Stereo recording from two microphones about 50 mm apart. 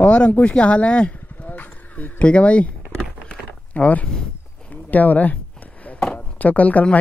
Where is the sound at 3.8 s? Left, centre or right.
Left.